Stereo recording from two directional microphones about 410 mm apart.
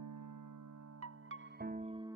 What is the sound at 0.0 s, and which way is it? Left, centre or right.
Music, right.